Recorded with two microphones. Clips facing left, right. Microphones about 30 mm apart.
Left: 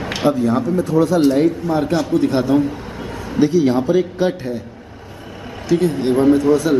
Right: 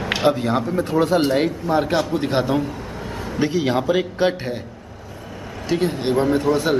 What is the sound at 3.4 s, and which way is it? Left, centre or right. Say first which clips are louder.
A man's voice: left 5 dB; right.